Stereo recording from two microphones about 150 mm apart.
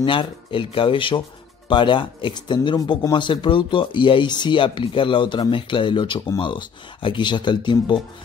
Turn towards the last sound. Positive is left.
turn(degrees=30)  # may be behind; listen again after turning